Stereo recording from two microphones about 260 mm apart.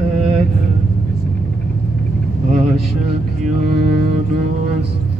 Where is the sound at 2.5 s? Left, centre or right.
Right.